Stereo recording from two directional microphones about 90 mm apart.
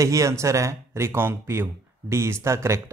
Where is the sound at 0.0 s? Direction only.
35° right (ahead or behind).